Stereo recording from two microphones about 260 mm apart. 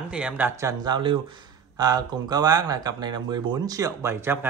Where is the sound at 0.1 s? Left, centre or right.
Centre.